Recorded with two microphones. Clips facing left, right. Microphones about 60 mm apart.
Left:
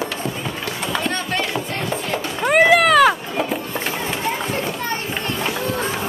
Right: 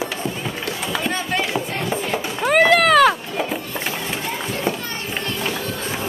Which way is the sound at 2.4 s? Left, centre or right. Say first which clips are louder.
Left 1 dB; centre.